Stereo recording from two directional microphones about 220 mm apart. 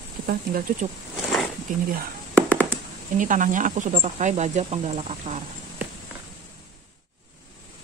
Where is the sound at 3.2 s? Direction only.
35° right (ahead or behind).